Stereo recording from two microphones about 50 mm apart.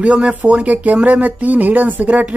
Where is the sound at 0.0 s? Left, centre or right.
Right.